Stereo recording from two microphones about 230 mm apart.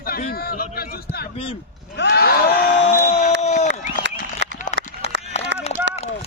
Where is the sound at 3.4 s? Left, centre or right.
Left.